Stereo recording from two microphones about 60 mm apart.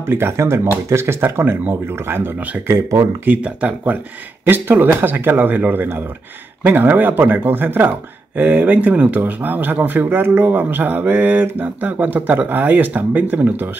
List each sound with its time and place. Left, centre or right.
0.0 s speech: right